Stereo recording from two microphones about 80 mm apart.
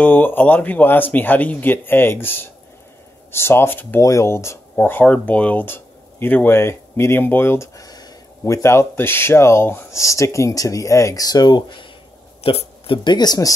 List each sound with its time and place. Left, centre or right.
0.0 s speech: left
4.0 s speech: left
4.7 s speech: left
11.2 s speech: left
12.9 s speech: left